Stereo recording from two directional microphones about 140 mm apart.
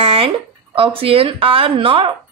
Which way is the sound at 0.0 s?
45° right (ahead or behind).